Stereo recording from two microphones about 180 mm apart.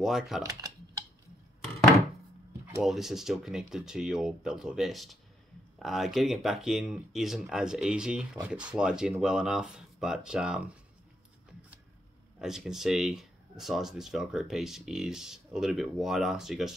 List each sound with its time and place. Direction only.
0.0 s speech: centre (ahead or behind)
0.4 s speech: 20° right (ahead or behind)
2.8 s speech: centre (ahead or behind)
12.4 s speech: centre (ahead or behind)